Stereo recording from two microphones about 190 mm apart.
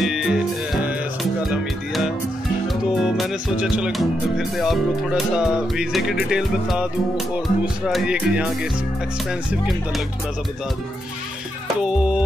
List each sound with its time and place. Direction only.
0.0 s music: 5° right (ahead or behind)
1.4 s music: centre (ahead or behind)
2.7 s speech: centre (ahead or behind)